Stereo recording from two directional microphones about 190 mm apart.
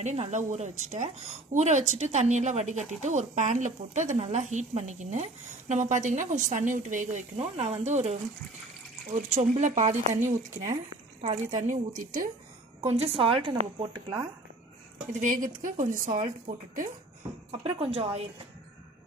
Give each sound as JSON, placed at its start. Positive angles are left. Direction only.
{"t": 0.0, "sound": "a woman's voice", "side_deg": -35}
{"t": 11.1, "sound": "speech", "side_deg": -40}
{"t": 12.8, "sound": "a woman's voice", "side_deg": -35}
{"t": 15.1, "sound": "a woman's voice", "side_deg": -45}
{"t": 17.5, "sound": "a woman's voice", "side_deg": -30}